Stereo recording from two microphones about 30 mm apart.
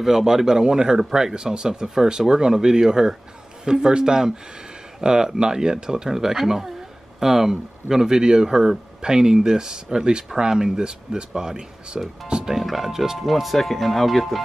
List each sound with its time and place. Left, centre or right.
0.0 s speech: centre
1.3 s speech: right
6.0 s speech: centre
10.8 s speech: right
12.6 s speech: centre
13.3 s speech: centre